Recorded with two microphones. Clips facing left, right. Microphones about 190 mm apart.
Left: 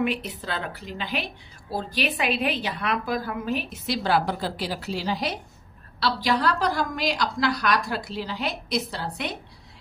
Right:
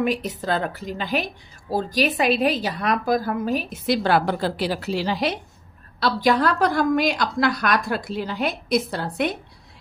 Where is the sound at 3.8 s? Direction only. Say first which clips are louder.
Right 4 dB; 55° right (ahead or behind).